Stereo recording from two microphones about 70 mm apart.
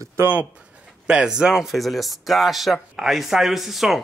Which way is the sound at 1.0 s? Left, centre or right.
Centre.